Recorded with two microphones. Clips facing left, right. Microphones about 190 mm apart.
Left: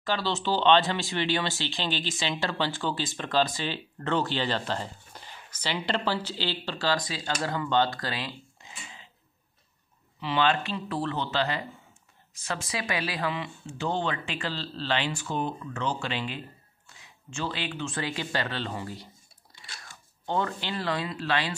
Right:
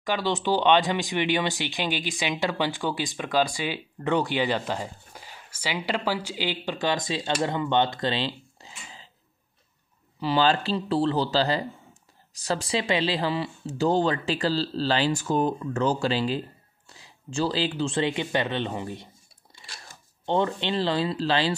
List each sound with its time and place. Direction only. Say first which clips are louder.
0.0 s speech: right 3 dB; 15° right (ahead or behind); by 9.1 s 35° right (ahead or behind)
10.2 s speech: right 3 dB; 35° right (ahead or behind)